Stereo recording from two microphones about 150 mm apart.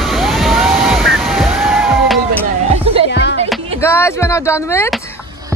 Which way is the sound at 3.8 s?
15° left (ahead or behind).